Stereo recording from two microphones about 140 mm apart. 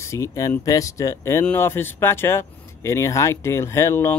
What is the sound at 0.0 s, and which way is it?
Speech, 20° left (ahead or behind).